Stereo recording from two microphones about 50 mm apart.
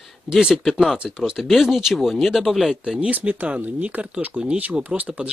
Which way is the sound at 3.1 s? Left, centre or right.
Right.